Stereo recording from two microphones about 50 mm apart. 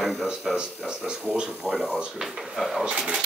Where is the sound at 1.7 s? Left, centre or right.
Centre.